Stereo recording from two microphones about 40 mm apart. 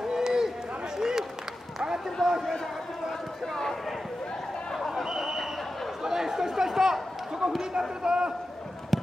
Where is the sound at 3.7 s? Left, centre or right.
Centre.